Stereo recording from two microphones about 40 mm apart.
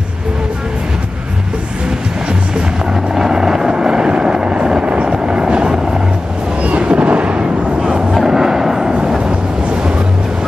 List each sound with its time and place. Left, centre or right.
3.2 s vehicle: centre
5.0 s helicopter: right
6.8 s a sound: right
8.3 s vehicle: centre